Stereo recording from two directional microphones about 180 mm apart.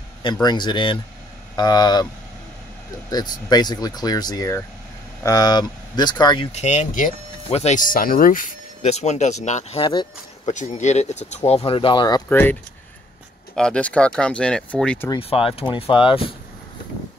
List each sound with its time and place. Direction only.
0.2 s speech: 25° left (ahead or behind)
3.1 s speech: 20° left (ahead or behind)
10.4 s speech: 40° left (ahead or behind); by 12.2 s 25° left (ahead or behind)
12.3 s speech: 10° left (ahead or behind)
13.6 s speech: 5° left (ahead or behind)
15.1 s speech: 30° left (ahead or behind)